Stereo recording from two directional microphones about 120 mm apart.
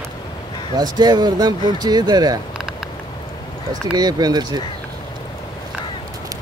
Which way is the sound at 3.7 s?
35° right (ahead or behind).